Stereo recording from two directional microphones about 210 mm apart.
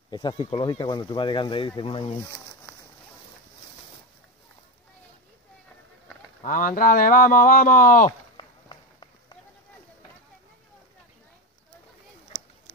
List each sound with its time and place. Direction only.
0.1 s speech: 20° left (ahead or behind)
6.4 s speech: 40° left (ahead or behind)
8.4 s walk: 20° left (ahead or behind)